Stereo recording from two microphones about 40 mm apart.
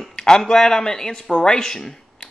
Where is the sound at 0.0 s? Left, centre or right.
Centre.